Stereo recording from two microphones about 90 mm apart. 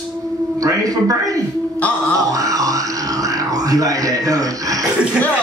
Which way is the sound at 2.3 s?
40° right (ahead or behind).